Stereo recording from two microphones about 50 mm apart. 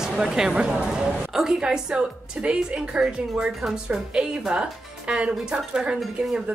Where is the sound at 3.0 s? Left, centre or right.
Centre.